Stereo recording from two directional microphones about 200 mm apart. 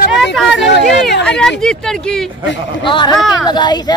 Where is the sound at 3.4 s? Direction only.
20° left (ahead or behind).